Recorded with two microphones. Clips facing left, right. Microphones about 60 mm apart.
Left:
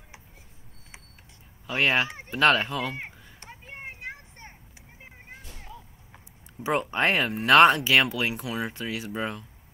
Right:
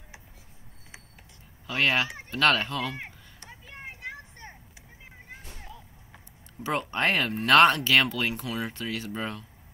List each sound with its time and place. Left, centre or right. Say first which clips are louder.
1.7 s speech: left 1 dB; centre
2.0 s speech: left 1 dB; left
2.3 s speech: left 2 dB; centre
3.3 s a sound: left 3 dB; left
6.6 s speech: left 2 dB; centre